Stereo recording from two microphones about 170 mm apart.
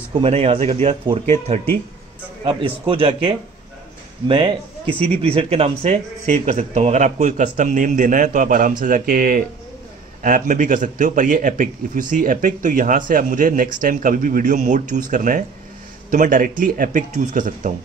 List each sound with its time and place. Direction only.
0.1 s speech: 35° right (ahead or behind)
2.4 s a man's voice: 30° right (ahead or behind); by 17.7 s 50° right (ahead or behind)